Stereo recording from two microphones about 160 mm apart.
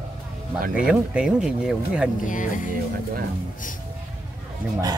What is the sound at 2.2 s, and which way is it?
Speech, 55° left (ahead or behind).